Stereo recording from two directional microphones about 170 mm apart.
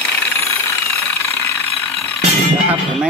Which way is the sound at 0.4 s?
15° left (ahead or behind).